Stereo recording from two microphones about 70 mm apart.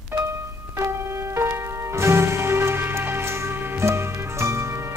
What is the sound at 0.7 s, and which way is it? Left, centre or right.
Music, right.